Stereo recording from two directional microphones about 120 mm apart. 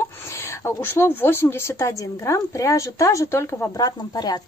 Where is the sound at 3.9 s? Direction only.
35° left (ahead or behind).